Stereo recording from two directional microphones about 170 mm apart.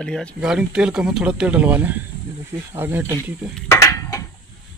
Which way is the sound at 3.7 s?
20° left (ahead or behind).